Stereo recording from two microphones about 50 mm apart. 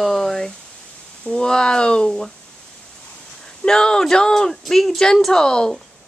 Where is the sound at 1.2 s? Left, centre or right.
Centre.